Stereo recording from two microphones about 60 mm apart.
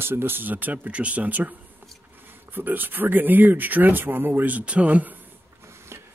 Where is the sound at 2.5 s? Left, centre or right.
Right.